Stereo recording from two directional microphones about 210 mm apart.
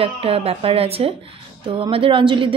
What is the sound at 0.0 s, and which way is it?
A woman's voice, 25° right (ahead or behind).